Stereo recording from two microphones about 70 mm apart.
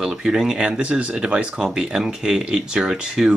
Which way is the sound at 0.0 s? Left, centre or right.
Centre.